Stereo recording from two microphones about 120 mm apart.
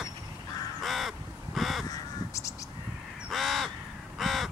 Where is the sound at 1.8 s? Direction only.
25° left (ahead or behind).